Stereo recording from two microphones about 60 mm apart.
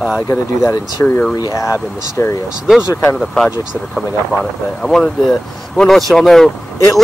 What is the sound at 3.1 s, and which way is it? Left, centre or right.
Speech, centre.